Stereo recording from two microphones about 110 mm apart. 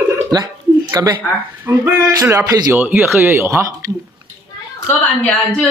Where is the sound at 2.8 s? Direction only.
5° right (ahead or behind).